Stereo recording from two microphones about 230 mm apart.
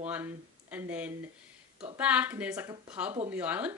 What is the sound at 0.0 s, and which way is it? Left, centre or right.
Speech, centre.